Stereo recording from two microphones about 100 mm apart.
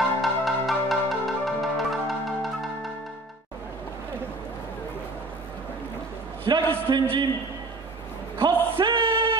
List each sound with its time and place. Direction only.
0.2 s music: centre (ahead or behind)
6.5 s a man's voice: 45° right (ahead or behind)
8.4 s a sound: 55° right (ahead or behind)